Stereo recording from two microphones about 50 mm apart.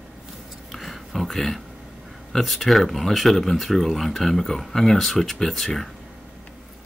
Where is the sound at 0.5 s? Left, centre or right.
Centre.